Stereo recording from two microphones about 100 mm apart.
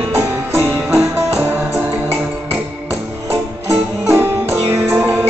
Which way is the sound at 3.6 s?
25° right (ahead or behind).